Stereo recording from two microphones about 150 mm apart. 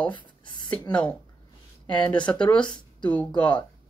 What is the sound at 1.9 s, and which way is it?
Speech, 30° left (ahead or behind).